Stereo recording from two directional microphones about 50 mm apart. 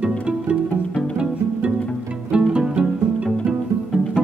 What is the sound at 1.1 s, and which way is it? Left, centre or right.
Music, right.